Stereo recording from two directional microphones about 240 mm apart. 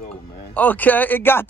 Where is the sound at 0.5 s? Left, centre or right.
Centre.